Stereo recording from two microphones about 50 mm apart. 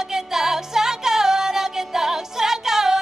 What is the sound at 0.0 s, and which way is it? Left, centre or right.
Music, centre.